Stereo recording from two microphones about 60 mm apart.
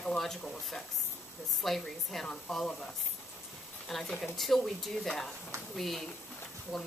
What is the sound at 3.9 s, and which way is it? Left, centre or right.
Speech, centre.